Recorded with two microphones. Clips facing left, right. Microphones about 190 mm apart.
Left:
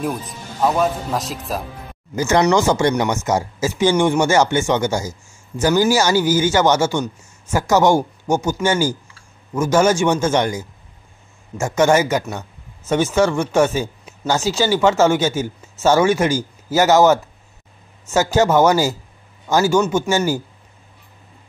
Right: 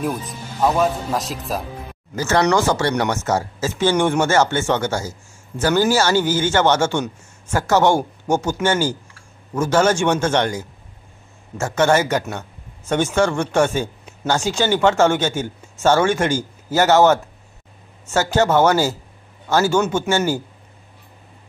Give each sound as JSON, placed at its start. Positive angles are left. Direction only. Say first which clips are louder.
{"t": 0.0, "sound": "speech", "louder": "even", "side_deg": 0}
{"t": 2.1, "sound": "speech", "louder": "left 2 dB", "side_deg": 20}